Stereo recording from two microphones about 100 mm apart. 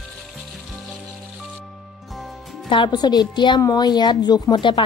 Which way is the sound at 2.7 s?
50° left (ahead or behind).